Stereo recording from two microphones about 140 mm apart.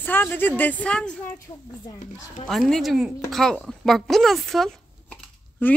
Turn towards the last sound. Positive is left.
turn(degrees=15)  # may be behind; listen again after turning